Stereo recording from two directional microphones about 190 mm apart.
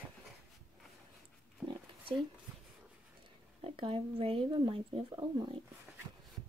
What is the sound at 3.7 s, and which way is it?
Speech, 30° right (ahead or behind).